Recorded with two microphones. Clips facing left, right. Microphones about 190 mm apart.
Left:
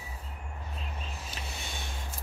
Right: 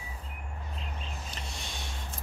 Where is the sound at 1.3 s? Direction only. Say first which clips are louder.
Left 1 dB; 5° left (ahead or behind).